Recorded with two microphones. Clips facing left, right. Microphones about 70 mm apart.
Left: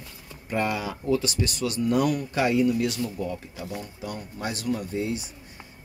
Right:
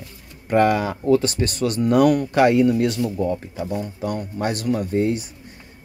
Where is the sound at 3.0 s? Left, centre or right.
Right.